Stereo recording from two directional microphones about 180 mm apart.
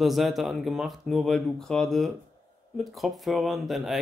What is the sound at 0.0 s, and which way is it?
Speech, centre (ahead or behind).